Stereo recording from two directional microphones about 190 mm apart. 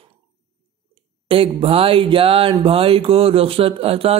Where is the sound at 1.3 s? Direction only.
30° right (ahead or behind).